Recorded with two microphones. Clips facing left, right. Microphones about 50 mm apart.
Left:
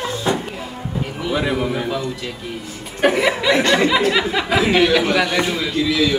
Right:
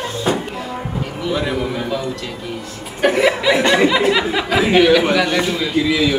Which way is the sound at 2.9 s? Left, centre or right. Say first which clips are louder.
Right 2 dB; centre.